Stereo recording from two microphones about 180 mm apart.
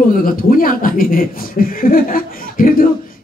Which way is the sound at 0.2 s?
50° left (ahead or behind).